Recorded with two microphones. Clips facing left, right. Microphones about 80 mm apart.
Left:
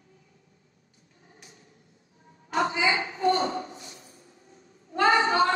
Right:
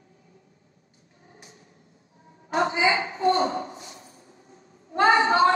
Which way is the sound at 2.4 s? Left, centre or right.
Right.